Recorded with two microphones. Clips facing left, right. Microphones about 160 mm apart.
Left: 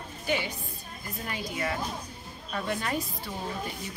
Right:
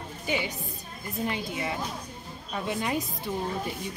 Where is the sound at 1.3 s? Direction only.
20° right (ahead or behind).